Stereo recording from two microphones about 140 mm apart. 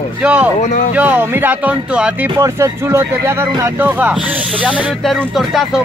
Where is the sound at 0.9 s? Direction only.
15° right (ahead or behind).